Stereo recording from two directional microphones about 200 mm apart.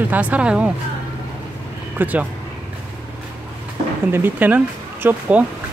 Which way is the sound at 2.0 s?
10° right (ahead or behind).